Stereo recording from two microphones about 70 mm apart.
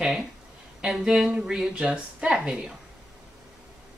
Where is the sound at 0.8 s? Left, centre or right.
Centre.